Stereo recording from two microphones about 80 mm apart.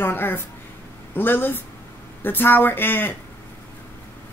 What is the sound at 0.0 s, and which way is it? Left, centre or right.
Speech, left.